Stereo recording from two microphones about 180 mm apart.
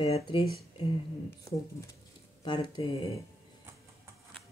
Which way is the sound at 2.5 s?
25° left (ahead or behind).